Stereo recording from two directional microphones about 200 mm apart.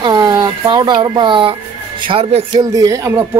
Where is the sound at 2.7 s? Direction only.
15° right (ahead or behind).